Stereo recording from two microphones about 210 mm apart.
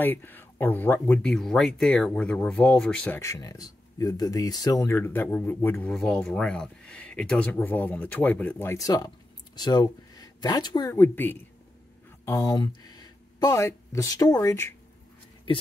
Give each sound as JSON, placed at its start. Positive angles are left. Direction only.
{"t": 0.0, "sound": "speech", "side_deg": 10}